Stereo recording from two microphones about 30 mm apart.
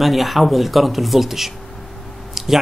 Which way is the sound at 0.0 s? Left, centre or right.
Centre.